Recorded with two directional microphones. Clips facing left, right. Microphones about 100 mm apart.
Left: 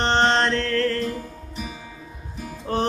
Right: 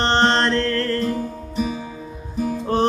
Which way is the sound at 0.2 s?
5° left (ahead or behind).